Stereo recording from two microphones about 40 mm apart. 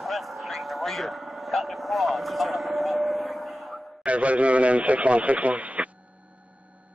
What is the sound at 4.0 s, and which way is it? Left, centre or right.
Speech, right.